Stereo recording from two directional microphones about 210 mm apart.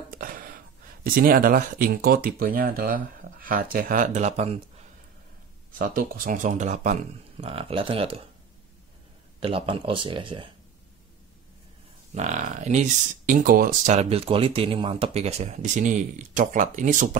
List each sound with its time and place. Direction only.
0.2 s gasp: 40° right (ahead or behind)
1.0 s speech: 40° right (ahead or behind)
5.8 s speech: 40° right (ahead or behind)
9.4 s speech: 25° right (ahead or behind)
12.1 s speech: 35° right (ahead or behind)